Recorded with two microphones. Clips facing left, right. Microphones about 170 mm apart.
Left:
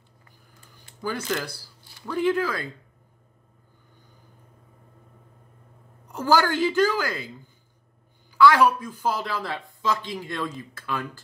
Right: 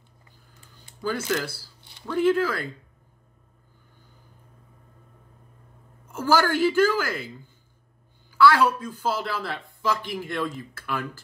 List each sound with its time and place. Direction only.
0.7 s a sound: 15° left (ahead or behind)
1.3 s a man's voice: 15° left (ahead or behind)
6.0 s a woman's voice: 20° left (ahead or behind)
8.4 s a man's voice: 15° left (ahead or behind)